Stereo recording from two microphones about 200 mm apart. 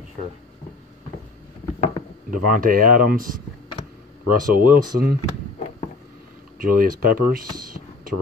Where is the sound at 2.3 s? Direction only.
45° right (ahead or behind).